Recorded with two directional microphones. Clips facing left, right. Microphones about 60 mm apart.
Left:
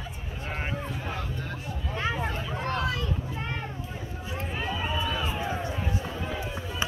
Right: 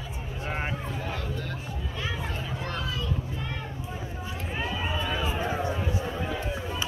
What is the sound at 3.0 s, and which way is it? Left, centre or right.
Children playing, left.